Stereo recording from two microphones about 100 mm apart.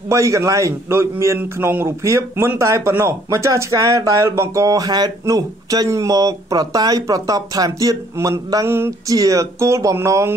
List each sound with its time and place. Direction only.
0.1 s speech: 30° right (ahead or behind)
8.6 s a sound: 25° right (ahead or behind)
9.1 s speech: 35° right (ahead or behind)